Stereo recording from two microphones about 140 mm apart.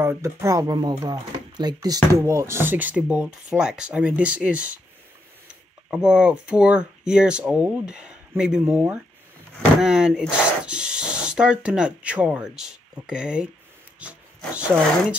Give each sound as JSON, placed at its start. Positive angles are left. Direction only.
{"t": 0.0, "sound": "speech", "side_deg": -20}